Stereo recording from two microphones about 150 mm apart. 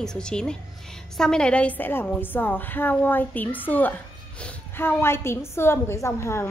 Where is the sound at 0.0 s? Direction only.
5° left (ahead or behind).